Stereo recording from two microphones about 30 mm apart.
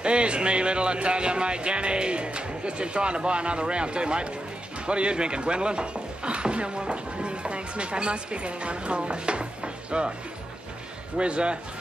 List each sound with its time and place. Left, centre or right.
0.0 s speech: right
11.1 s speech: right